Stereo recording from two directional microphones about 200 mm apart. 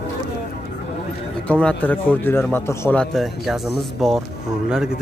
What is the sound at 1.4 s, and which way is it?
A man's voice, 5° left (ahead or behind).